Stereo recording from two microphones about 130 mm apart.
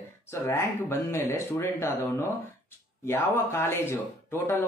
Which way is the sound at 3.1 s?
20° left (ahead or behind).